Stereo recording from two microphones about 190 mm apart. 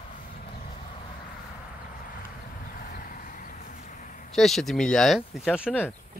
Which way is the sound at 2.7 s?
50° left (ahead or behind).